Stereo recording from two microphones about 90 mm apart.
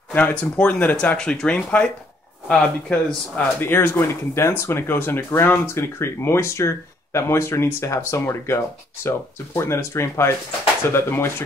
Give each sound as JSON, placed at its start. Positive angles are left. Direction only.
{"t": 0.1, "sound": "speech", "side_deg": 15}
{"t": 3.3, "sound": "speech", "side_deg": 25}